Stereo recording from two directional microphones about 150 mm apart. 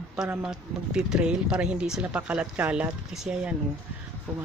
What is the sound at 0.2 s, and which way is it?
Speech, 5° right (ahead or behind).